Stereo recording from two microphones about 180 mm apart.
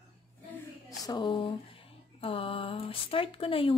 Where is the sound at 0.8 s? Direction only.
20° left (ahead or behind).